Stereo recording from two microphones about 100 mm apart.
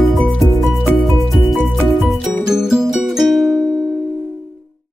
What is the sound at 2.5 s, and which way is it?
Music, 5° right (ahead or behind).